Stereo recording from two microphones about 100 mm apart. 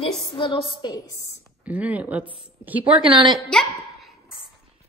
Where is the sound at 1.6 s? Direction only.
15° right (ahead or behind).